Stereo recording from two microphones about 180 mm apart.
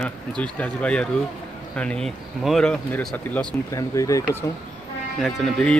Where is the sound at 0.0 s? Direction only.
5° left (ahead or behind).